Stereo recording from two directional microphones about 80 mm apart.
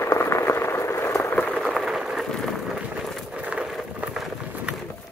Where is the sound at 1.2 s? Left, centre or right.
Left.